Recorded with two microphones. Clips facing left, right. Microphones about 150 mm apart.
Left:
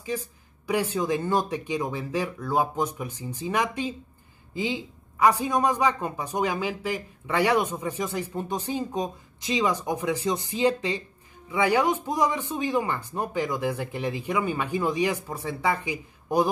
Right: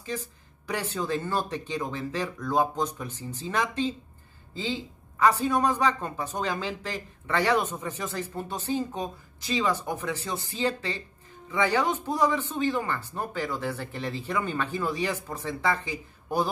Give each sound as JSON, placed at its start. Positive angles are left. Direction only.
{"t": 0.0, "sound": "speech", "side_deg": 10}